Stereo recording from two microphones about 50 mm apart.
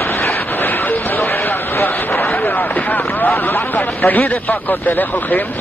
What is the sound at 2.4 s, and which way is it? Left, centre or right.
Speech, left.